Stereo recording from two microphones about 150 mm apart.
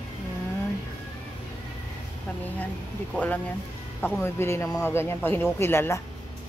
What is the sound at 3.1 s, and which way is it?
Speech, 10° left (ahead or behind).